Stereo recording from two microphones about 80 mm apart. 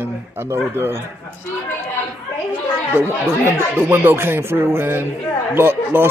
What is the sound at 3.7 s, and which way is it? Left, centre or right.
A man's voice, right.